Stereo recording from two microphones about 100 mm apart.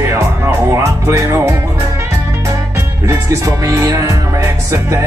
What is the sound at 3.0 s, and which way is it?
Music, 30° right (ahead or behind).